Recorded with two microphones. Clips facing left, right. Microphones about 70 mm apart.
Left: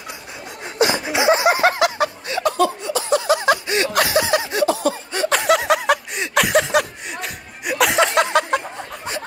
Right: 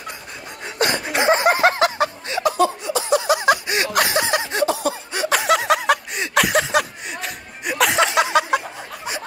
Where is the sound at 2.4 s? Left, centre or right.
Centre.